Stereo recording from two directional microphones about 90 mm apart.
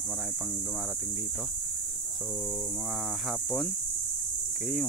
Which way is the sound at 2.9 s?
Centre (ahead or behind).